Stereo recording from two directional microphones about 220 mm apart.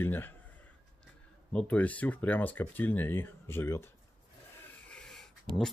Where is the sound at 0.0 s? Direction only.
10° left (ahead or behind).